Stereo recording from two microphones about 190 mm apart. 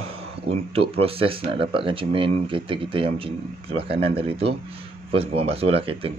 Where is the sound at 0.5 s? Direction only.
30° right (ahead or behind).